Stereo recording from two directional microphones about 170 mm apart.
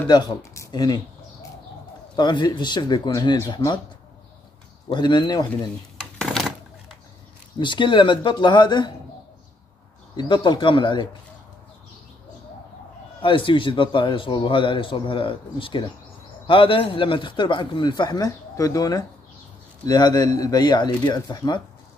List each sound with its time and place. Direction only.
0.1 s speech: 20° left (ahead or behind)
2.1 s a man's voice: 25° left (ahead or behind)
4.8 s a man's voice: 25° left (ahead or behind)
5.9 s a sound: centre (ahead or behind)
7.5 s a man's voice: 30° left (ahead or behind)
10.1 s a man's voice: 25° left (ahead or behind)
13.2 s a man's voice: 30° left (ahead or behind)